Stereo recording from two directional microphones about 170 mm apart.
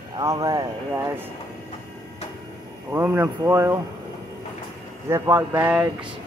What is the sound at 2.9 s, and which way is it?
Speech, 15° right (ahead or behind).